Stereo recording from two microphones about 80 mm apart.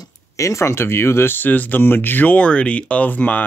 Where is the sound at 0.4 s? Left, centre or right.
Left.